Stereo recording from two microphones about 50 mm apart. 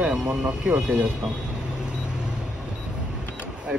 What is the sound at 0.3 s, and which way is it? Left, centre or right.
Speech, right.